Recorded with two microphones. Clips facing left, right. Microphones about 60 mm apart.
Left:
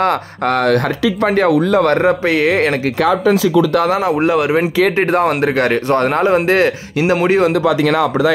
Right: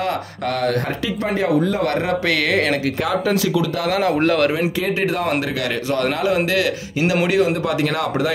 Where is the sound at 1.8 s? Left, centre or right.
Left.